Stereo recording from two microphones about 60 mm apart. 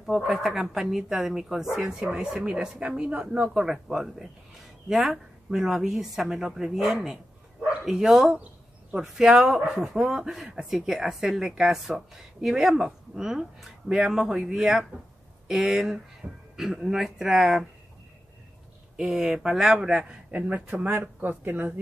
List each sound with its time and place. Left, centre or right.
0.4 s a woman's voice: centre
18.9 s speech: centre
20.0 s speech: right